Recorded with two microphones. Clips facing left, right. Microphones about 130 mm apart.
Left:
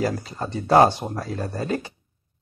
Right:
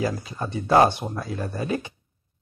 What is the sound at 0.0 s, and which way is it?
Speech, 40° left (ahead or behind).